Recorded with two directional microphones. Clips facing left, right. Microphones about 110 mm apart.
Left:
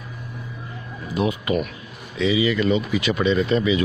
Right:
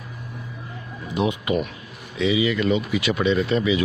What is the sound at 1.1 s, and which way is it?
Speech, 20° right (ahead or behind).